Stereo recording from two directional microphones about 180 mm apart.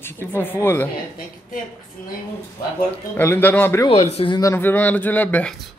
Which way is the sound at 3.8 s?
35° left (ahead or behind).